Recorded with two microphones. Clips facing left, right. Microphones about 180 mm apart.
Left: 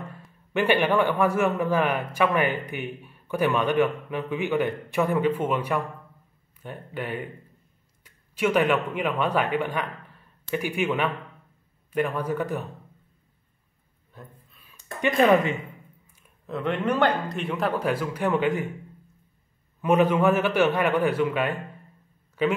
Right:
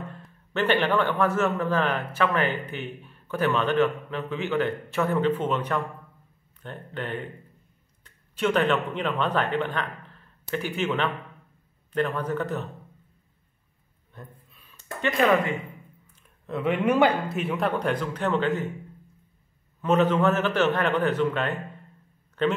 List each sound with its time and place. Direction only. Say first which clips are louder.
0.1 s a man's voice: left 4 dB; 10° left (ahead or behind)
14.1 s a sound: right 1 dB; centre (ahead or behind)
15.0 s a man's voice: left 3 dB; 15° left (ahead or behind)
16.4 s speech: right 2 dB; 5° right (ahead or behind); by 18.7 s 10° left (ahead or behind)
19.8 s a man's voice: left 1 dB; 10° left (ahead or behind)